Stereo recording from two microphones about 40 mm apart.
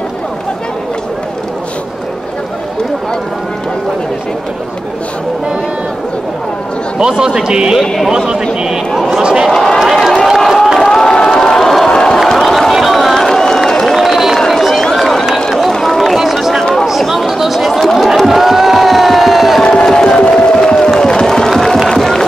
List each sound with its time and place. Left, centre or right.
7.0 s a man's voice: centre
9.2 s a sound: centre
9.5 s speech: centre
9.8 s run: centre
11.0 s crowd: centre
12.3 s a sound: centre
13.9 s a sound: centre
14.5 s run: centre
16.0 s run: centre
16.8 s chatter: centre
17.6 s crowd: centre
19.6 s crowd: centre
21.0 s a sound: centre
21.5 s crowd: centre